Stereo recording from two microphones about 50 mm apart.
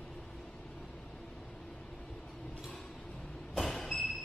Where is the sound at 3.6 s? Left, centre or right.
Centre.